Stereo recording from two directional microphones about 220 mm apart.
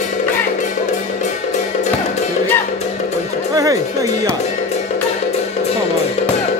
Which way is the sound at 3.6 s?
15° right (ahead or behind).